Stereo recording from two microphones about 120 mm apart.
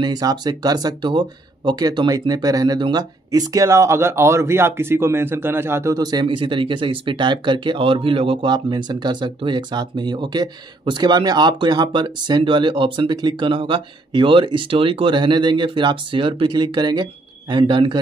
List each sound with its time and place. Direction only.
0.0 s speech: 35° right (ahead or behind)